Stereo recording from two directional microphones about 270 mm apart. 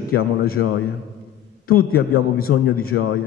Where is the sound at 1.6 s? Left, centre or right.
Left.